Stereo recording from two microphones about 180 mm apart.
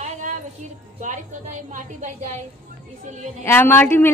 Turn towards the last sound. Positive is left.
turn(degrees=10)  # may be behind; listen again after turning